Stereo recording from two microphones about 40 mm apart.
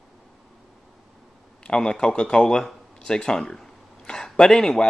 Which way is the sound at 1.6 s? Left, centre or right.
Left.